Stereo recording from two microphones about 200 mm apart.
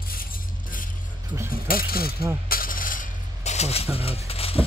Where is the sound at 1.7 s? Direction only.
45° left (ahead or behind).